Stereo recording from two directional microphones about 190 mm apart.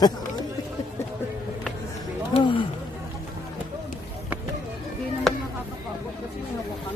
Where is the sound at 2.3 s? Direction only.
25° left (ahead or behind).